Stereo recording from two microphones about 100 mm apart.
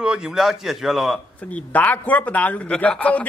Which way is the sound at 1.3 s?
15° left (ahead or behind).